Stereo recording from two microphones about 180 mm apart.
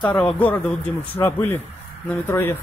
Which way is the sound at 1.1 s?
10° left (ahead or behind).